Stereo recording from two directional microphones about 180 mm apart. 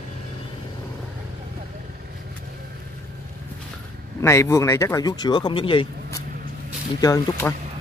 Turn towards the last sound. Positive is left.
turn(degrees=20)  # may be behind; listen again after turning